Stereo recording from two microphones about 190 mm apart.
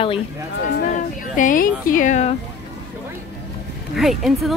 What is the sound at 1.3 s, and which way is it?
Speech, 45° left (ahead or behind).